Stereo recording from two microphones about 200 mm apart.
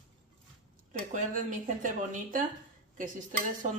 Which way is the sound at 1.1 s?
40° right (ahead or behind).